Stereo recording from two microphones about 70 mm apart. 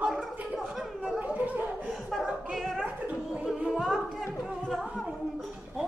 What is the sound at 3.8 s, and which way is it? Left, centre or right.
Music, centre.